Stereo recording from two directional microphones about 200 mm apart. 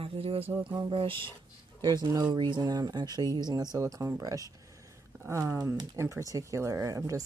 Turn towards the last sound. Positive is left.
turn(degrees=-15)  # may be behind; listen again after turning